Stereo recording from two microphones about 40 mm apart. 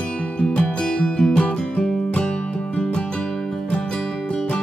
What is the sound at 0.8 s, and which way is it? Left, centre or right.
Music, left.